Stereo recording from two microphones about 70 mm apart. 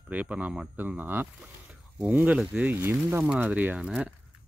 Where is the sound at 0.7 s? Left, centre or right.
Right.